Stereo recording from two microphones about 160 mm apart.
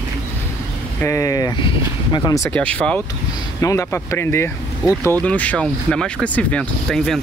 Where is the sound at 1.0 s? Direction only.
15° left (ahead or behind).